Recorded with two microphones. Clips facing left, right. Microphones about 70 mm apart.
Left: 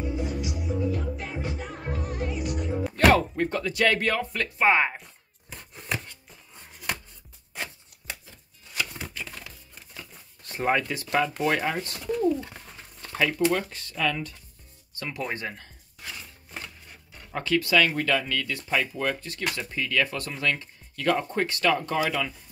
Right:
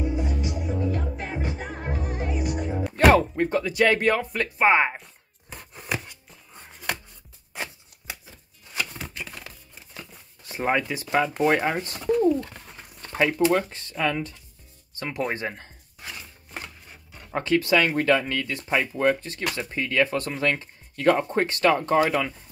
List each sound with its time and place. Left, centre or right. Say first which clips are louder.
0.0 s music: right 3 dB; right
0.4 s music: right 1 dB; right
2.8 s music: right 2 dB; centre
3.2 s speech: right 3 dB; centre
5.9 s a sound: right 2 dB; centre
7.5 s shuffling cards: right 2 dB; centre
9.0 s a sound: right 1 dB; centre
10.5 s speech: right 1 dB; centre; by 12.0 s right
12.4 s bird: right 4 dB; centre
13.0 s speech: right 3 dB; right
15.3 s a sound: right 3 dB; right
16.6 s speech: right 1 dB; right